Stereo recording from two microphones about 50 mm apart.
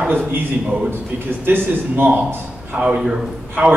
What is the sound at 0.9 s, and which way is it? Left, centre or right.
A man's voice, right.